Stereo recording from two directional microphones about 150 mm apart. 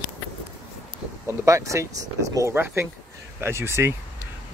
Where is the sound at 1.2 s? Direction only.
20° right (ahead or behind).